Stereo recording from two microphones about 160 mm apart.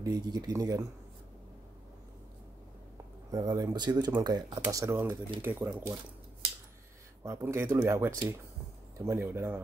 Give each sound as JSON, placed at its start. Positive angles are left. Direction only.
{"t": 0.0, "sound": "speech", "side_deg": -25}
{"t": 3.3, "sound": "speech", "side_deg": -25}
{"t": 7.2, "sound": "speech", "side_deg": -15}